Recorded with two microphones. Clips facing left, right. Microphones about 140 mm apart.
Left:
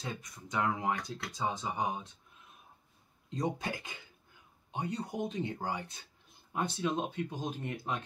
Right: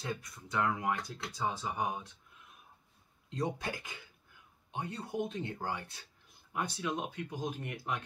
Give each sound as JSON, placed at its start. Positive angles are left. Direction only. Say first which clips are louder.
{"t": 0.0, "sound": "speech", "louder": "right 2 dB", "side_deg": 20}
{"t": 3.3, "sound": "speech", "louder": "left 1 dB", "side_deg": 20}